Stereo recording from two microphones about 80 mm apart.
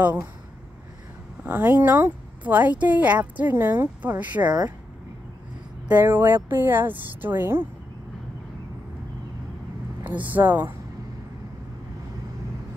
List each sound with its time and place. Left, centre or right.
1.4 s speech: right
5.9 s speech: right
10.0 s speech: centre